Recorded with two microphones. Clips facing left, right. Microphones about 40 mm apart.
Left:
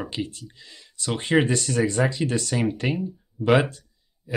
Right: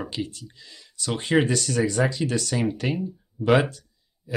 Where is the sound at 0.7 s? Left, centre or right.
Centre.